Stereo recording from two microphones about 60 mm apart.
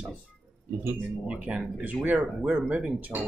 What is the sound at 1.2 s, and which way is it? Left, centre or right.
Speech, centre.